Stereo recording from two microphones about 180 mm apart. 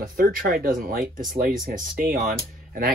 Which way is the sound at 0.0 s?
50° right (ahead or behind).